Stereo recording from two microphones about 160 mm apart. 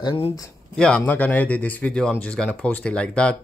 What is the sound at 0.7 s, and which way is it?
Speech, 5° left (ahead or behind).